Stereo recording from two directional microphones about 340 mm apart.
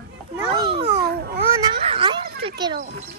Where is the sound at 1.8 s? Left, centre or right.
Centre.